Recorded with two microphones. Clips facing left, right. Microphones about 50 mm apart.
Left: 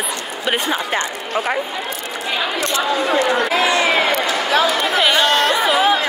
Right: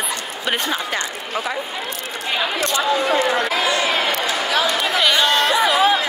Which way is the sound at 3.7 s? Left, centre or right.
Left.